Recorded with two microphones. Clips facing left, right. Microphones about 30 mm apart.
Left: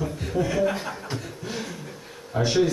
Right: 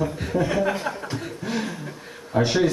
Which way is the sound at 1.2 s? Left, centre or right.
Right.